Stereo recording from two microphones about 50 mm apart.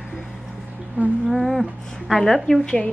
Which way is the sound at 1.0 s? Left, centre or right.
Right.